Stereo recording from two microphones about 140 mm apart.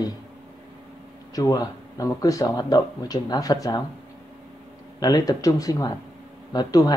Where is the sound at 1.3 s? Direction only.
25° left (ahead or behind).